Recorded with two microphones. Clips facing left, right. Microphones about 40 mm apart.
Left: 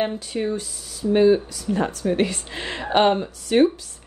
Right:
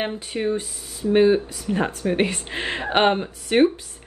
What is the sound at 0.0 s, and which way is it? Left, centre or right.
A woman's voice, right.